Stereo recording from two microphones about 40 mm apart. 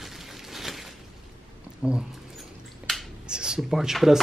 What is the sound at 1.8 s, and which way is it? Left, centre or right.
Speech, centre.